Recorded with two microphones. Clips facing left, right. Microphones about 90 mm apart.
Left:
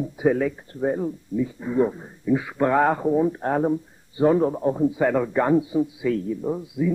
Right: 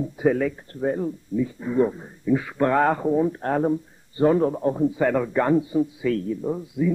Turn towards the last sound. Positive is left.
turn(degrees=5)  # may be behind; listen again after turning